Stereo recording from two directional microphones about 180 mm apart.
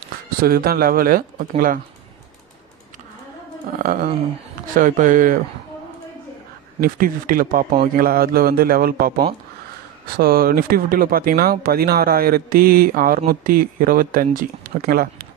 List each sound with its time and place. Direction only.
0.4 s speech: 55° right (ahead or behind)
3.7 s a sound: 50° right (ahead or behind)
4.7 s speech: 45° right (ahead or behind)
6.8 s speech: 50° right (ahead or behind)